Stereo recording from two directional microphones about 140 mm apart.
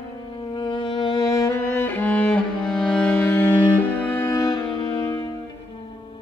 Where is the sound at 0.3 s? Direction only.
35° left (ahead or behind); by 4.3 s 15° left (ahead or behind).